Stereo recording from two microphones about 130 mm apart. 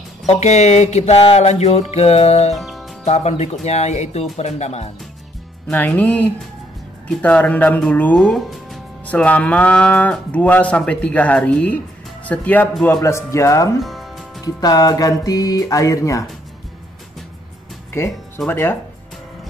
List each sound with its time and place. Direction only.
0.3 s a sound: 60° left (ahead or behind)
2.5 s music: centre (ahead or behind)
3.1 s speech: 55° left (ahead or behind)
3.6 s a sound: 55° left (ahead or behind)
5.7 s speech: 15° left (ahead or behind)
8.2 s speech: centre (ahead or behind)
9.0 s speech: 10° left (ahead or behind)
13.7 s music: centre (ahead or behind)
14.4 s speech: 30° left (ahead or behind)
18.5 s speech: 15° left (ahead or behind)